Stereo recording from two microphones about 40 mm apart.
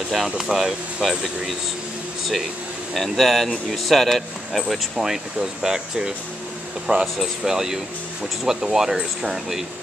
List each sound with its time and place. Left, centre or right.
0.1 s speech: centre
2.9 s speech: centre
4.9 s speech: centre
6.9 s speech: right
7.4 s speech: centre